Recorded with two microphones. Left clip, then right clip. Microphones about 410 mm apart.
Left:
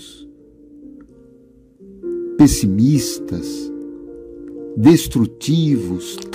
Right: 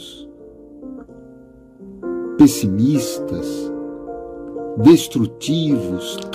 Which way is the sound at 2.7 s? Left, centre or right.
Centre.